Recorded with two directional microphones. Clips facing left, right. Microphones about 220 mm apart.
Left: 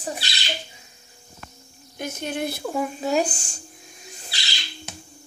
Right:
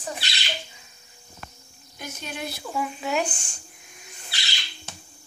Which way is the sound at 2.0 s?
55° left (ahead or behind).